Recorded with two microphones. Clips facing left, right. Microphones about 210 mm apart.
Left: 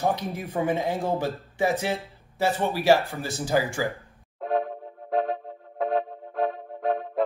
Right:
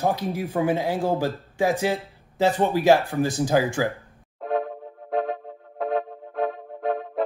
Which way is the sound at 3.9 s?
Centre (ahead or behind).